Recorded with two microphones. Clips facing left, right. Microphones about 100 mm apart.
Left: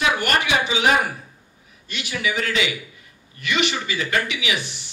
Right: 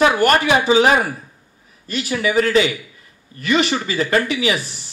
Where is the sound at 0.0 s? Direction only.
40° right (ahead or behind).